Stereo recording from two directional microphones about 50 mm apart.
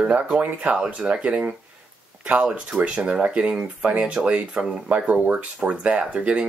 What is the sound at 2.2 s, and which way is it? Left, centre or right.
Speech, right.